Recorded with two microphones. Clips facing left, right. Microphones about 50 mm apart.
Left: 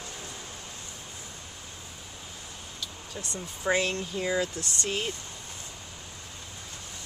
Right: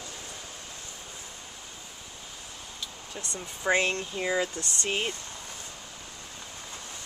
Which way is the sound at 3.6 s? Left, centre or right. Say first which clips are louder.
Right 1 dB; right.